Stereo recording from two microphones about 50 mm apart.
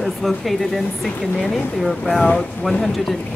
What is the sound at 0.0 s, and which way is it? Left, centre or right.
Speech, centre.